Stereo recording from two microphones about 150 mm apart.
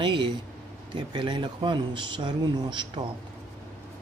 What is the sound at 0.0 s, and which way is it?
Speech, 30° right (ahead or behind).